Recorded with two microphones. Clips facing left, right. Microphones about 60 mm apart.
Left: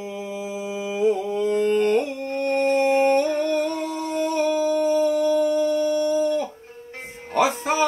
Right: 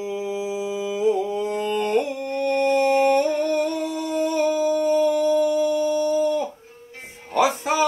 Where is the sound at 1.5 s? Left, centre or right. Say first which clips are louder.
Left 5 dB; left.